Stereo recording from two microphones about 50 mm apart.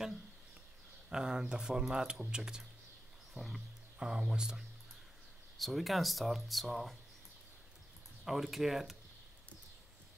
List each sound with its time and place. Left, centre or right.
1.1 s speech: centre
3.3 s speech: centre
4.0 s speech: centre
5.6 s speech: centre
8.3 s speech: centre